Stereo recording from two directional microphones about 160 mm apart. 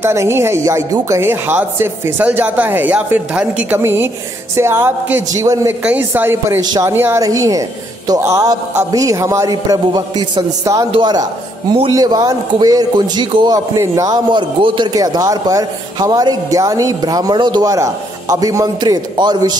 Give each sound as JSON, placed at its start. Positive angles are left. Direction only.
{"t": 0.0, "sound": "speech", "side_deg": -15}
{"t": 6.6, "sound": "a man's voice", "side_deg": -25}
{"t": 6.9, "sound": "a man's voice", "side_deg": -15}